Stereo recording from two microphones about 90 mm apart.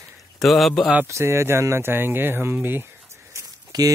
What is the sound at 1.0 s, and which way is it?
Speech, 30° right (ahead or behind).